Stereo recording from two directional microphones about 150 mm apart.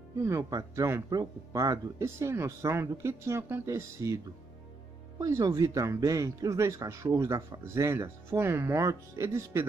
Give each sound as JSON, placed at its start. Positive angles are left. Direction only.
{"t": 0.2, "sound": "speech", "side_deg": -25}
{"t": 5.2, "sound": "speech", "side_deg": -25}